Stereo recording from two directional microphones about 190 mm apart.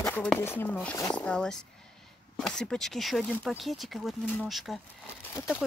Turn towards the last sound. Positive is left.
turn(degrees=10)  # may be behind; listen again after turning